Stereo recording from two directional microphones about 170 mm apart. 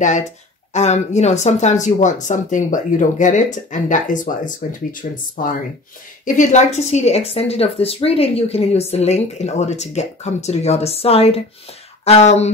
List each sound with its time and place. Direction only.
0.7 s a woman's voice: 40° left (ahead or behind)